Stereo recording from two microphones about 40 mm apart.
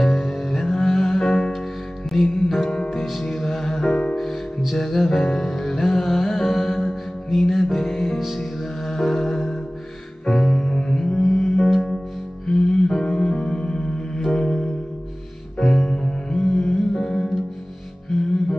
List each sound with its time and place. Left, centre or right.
0.0 s music: centre
4.2 s music: centre